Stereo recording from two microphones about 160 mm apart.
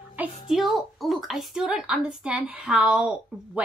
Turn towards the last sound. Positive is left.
turn(degrees=-5)  # may be behind; listen again after turning